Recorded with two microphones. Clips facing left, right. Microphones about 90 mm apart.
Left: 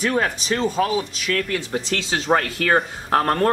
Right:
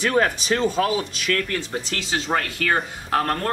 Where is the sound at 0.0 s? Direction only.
Centre (ahead or behind).